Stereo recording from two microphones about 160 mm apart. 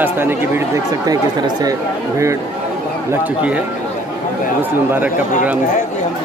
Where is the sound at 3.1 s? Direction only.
10° right (ahead or behind).